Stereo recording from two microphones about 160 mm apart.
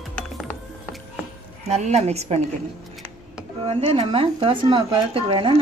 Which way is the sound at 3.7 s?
40° right (ahead or behind).